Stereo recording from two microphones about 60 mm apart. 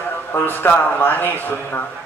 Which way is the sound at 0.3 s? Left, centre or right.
Left.